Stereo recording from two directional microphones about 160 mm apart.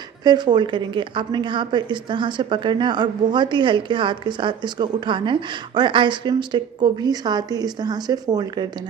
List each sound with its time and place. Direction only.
0.2 s a woman's voice: 25° right (ahead or behind)